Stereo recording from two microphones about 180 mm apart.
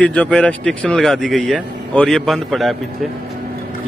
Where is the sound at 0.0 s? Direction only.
5° left (ahead or behind).